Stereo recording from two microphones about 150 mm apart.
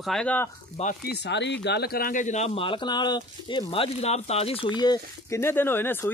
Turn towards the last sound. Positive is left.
turn(degrees=15)  # may be behind; listen again after turning